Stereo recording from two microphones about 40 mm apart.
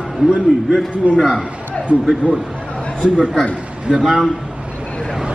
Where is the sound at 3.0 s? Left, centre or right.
Right.